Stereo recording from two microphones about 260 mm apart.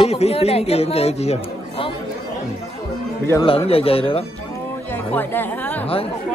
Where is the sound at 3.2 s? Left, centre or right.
Centre.